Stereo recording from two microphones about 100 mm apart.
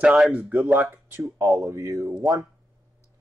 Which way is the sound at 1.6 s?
30° right (ahead or behind).